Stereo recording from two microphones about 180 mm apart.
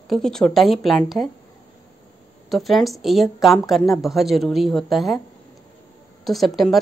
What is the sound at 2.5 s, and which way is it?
Speech, centre (ahead or behind).